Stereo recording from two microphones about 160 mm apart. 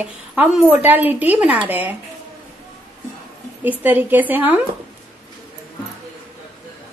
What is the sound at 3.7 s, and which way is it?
Speech, 10° right (ahead or behind).